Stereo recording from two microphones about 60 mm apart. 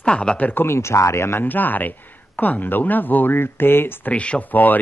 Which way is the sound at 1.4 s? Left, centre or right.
Left.